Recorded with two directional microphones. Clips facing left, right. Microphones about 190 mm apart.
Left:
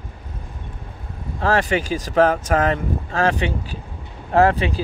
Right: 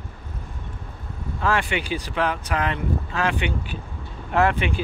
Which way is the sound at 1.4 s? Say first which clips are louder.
Left 5 dB; 40° left (ahead or behind).